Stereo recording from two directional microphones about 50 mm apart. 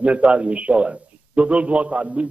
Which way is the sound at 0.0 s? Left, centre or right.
Right.